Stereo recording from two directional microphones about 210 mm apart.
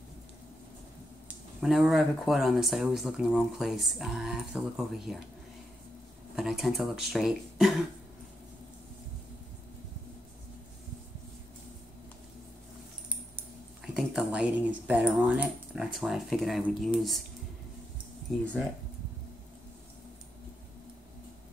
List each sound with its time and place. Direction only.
1.6 s speech: centre (ahead or behind)
6.3 s speech: centre (ahead or behind)
13.9 s speech: 5° right (ahead or behind)
18.3 s speech: centre (ahead or behind)